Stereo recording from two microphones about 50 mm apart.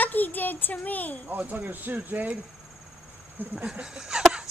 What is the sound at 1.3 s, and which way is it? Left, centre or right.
Speech, right.